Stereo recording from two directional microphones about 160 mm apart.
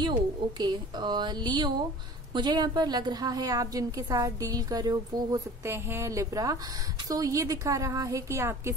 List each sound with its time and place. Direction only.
0.0 s a woman's voice: 25° right (ahead or behind)